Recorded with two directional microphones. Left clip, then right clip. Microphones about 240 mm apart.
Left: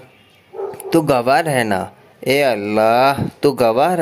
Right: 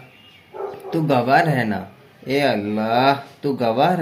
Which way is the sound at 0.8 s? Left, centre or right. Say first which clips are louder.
Left 5 dB; left.